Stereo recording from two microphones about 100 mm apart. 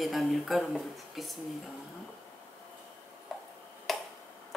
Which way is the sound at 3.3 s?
5° left (ahead or behind).